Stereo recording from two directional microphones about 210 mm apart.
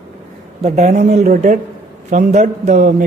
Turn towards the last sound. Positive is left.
turn(degrees=-40)  # may be behind; listen again after turning